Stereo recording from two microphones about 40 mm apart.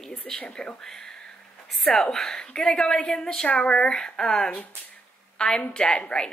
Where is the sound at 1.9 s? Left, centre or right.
Centre.